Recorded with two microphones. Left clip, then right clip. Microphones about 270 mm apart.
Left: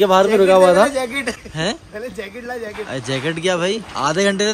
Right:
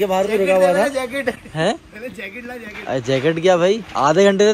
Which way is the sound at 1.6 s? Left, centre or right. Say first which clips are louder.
Right 3 dB; centre.